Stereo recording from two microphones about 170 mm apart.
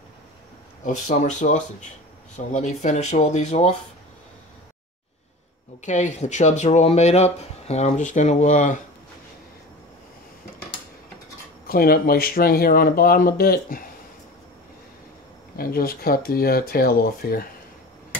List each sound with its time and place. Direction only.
0.8 s speech: 45° left (ahead or behind)
5.9 s speech: 45° left (ahead or behind)
11.6 s speech: 60° left (ahead or behind)
15.5 s speech: 60° left (ahead or behind)